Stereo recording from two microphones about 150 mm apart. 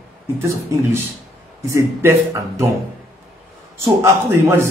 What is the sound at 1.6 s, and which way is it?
A man's voice, 20° right (ahead or behind).